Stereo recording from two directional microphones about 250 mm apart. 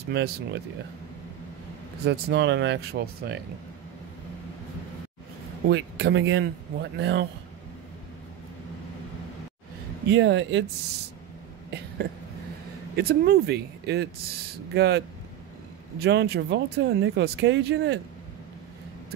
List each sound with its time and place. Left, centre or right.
0.1 s speech: right
2.0 s speech: right
5.7 s speech: right
10.0 s speech: right
12.9 s speech: right